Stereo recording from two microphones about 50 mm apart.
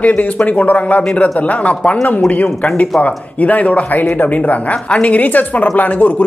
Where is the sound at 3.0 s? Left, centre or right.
Left.